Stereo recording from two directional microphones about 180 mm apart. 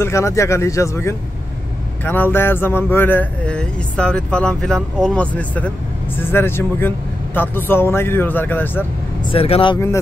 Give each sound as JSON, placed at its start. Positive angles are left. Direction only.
{"t": 0.0, "sound": "speech", "side_deg": 15}
{"t": 9.3, "sound": "speech", "side_deg": 30}